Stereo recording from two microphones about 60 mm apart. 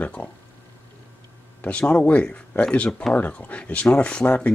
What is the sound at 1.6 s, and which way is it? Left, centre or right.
Speech, left.